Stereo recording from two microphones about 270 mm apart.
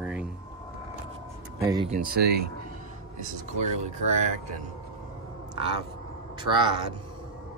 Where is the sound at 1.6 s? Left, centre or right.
Centre.